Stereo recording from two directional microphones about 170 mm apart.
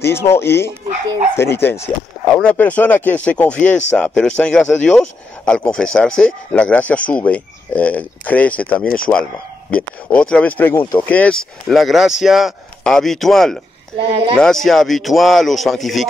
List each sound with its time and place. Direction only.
0.0 s speech: 15° left (ahead or behind)
8.8 s speech: 55° left (ahead or behind)
9.1 s speech: 5° left (ahead or behind)